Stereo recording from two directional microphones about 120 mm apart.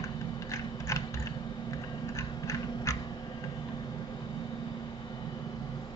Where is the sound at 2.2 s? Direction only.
25° left (ahead or behind).